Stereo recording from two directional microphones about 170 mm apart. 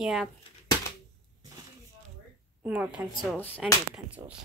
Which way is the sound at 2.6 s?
10° right (ahead or behind).